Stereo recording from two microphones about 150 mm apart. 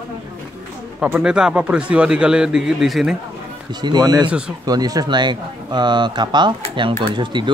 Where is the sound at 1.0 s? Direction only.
5° right (ahead or behind).